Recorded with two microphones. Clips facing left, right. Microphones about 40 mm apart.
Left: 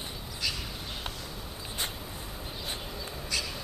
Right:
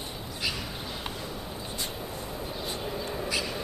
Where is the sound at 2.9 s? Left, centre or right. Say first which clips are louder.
Right 5 dB; right.